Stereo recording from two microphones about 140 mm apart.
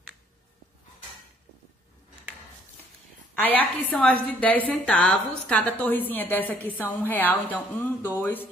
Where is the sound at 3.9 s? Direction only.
10° left (ahead or behind).